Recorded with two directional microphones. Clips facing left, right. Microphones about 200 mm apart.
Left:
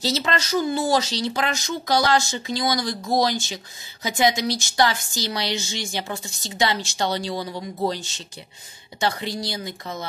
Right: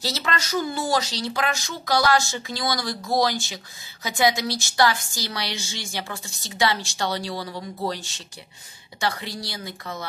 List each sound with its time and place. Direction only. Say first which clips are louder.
0.0 s a woman's voice: left 4 dB; 25° left (ahead or behind)